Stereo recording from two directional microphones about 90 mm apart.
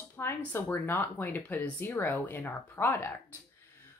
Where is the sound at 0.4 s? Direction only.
25° left (ahead or behind).